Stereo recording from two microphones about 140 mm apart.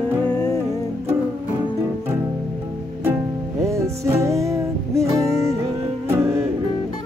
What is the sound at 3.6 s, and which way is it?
Music, 20° right (ahead or behind).